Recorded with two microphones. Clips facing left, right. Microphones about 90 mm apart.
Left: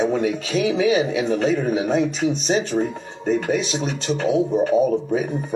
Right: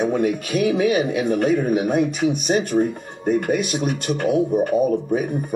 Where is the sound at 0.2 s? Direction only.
55° right (ahead or behind).